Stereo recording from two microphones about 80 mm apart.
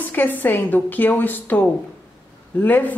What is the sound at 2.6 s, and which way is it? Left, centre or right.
Speech, left.